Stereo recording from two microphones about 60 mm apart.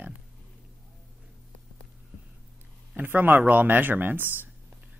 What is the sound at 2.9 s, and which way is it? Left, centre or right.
Speech, right.